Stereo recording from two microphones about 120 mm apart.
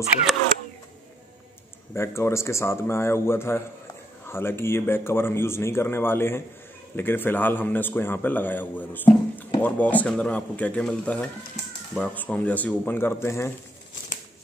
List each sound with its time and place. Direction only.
2.0 s a man's voice: 20° left (ahead or behind)